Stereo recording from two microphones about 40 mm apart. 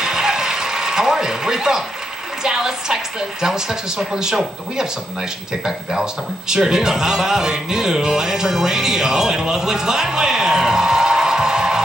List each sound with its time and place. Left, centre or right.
0.0 s mechanisms: centre
2.4 s speech: centre
5.7 s speech: centre